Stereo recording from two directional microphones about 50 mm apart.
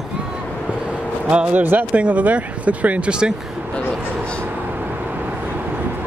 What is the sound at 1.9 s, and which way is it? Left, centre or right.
Speech, right.